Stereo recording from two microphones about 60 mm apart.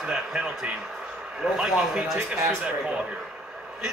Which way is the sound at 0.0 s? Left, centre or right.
Centre.